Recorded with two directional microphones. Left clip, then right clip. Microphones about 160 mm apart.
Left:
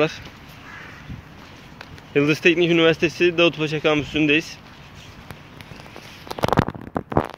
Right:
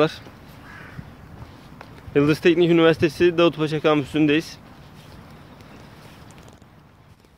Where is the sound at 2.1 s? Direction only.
25° right (ahead or behind).